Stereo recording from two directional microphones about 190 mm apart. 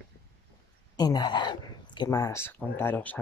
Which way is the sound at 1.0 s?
20° left (ahead or behind).